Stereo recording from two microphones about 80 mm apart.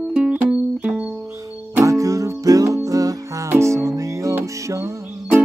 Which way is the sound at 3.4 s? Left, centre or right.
Right.